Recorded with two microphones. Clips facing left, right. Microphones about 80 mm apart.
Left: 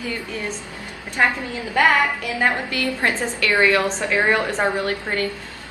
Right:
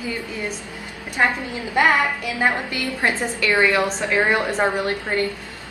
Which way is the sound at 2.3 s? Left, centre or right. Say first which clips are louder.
Left 1 dB; centre.